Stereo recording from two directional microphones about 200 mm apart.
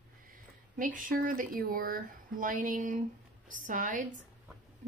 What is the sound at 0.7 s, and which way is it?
Speech, 45° right (ahead or behind).